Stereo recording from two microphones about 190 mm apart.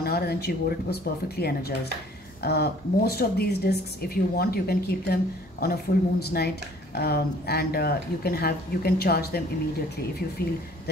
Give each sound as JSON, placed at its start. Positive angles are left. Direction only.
{"t": 0.0, "sound": "speech", "side_deg": 55}